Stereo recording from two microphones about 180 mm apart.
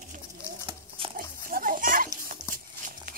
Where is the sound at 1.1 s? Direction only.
50° right (ahead or behind).